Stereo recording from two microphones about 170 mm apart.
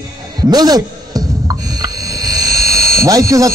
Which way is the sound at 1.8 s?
20° right (ahead or behind).